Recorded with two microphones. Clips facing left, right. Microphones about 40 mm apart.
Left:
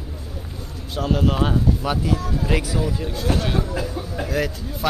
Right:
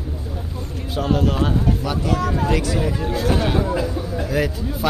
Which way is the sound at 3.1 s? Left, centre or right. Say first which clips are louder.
Right 4 dB; centre.